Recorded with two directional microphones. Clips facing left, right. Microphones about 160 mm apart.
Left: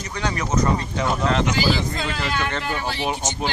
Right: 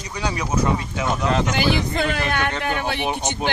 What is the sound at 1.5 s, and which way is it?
Speech, 60° right (ahead or behind).